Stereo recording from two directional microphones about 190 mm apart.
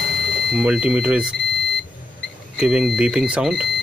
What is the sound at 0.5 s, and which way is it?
Speech, centre (ahead or behind).